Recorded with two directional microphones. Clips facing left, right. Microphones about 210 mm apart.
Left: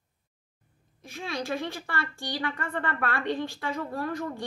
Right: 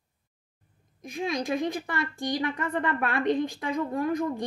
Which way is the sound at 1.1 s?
15° right (ahead or behind).